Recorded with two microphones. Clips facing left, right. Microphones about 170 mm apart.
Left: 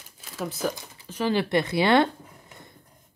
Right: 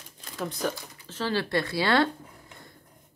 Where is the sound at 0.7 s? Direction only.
15° left (ahead or behind).